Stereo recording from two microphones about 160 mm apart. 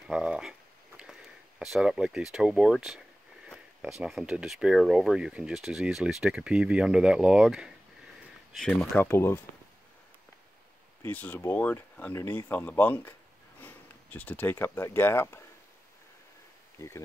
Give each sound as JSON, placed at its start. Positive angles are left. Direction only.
{"t": 0.0, "sound": "a sound", "side_deg": -5}
{"t": 1.6, "sound": "speech", "side_deg": -5}
{"t": 9.0, "sound": "speech", "side_deg": 15}
{"t": 11.0, "sound": "speech", "side_deg": 10}
{"t": 16.7, "sound": "speech", "side_deg": 15}